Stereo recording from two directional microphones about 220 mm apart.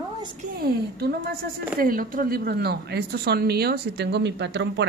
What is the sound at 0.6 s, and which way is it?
Speech, 45° right (ahead or behind).